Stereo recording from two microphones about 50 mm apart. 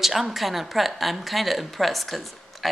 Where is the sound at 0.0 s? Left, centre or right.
Centre.